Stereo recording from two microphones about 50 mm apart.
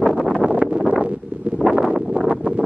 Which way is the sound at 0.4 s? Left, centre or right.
Right.